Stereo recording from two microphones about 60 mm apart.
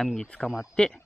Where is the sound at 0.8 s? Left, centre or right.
Centre.